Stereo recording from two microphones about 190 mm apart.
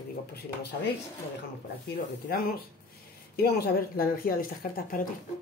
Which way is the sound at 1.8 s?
55° left (ahead or behind).